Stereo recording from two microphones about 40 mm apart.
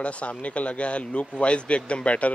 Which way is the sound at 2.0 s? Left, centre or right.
Left.